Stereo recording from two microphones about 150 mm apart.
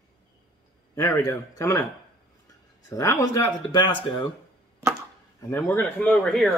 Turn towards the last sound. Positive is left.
turn(degrees=0)  # may be behind; listen again after turning